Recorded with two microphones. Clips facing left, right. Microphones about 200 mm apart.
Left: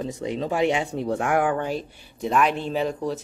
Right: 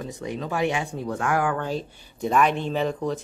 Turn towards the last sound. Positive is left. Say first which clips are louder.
# even
turn(degrees=5)  # may be behind; listen again after turning